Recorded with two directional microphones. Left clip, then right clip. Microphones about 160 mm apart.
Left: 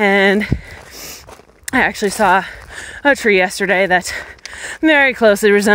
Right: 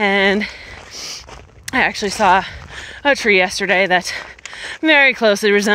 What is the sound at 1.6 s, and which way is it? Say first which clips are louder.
Speech: left 2 dB; 55° left (ahead or behind).